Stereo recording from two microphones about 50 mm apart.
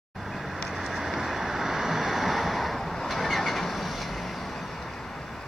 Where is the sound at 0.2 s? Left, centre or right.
Centre.